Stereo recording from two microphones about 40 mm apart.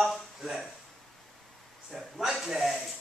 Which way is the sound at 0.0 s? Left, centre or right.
Centre.